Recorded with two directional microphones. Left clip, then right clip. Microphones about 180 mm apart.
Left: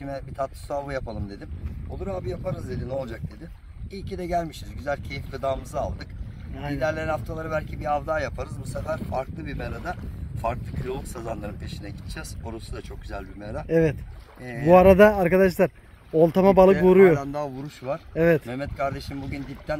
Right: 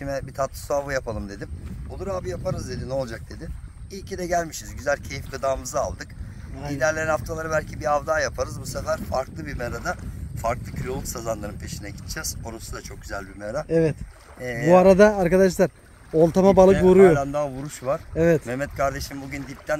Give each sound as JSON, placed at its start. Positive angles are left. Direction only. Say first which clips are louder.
{"t": 0.0, "sound": "speech", "louder": "right 4 dB", "side_deg": -20}
{"t": 3.9, "sound": "speech", "louder": "right 2 dB", "side_deg": -15}
{"t": 13.7, "sound": "speech", "louder": "left 1 dB", "side_deg": 10}
{"t": 16.1, "sound": "speech", "louder": "right 1 dB", "side_deg": 15}
{"t": 16.3, "sound": "speech", "louder": "right 1 dB", "side_deg": -5}
{"t": 17.1, "sound": "speech", "louder": "right 2 dB", "side_deg": -55}
{"t": 17.4, "sound": "speech", "louder": "right 4 dB", "side_deg": -30}
{"t": 17.8, "sound": "speech", "louder": "right 1 dB", "side_deg": -5}
{"t": 18.5, "sound": "speech", "louder": "right 4 dB", "side_deg": -10}